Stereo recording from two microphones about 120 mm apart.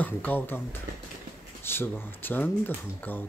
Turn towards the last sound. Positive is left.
turn(degrees=15)  # may be behind; listen again after turning